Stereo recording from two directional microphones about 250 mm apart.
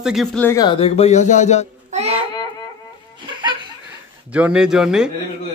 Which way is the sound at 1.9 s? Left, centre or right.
Right.